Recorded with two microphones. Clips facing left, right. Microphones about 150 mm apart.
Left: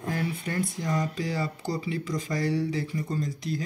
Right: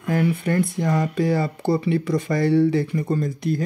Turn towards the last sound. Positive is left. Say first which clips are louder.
# right 8 dB
turn(degrees=-55)  # may be behind; listen again after turning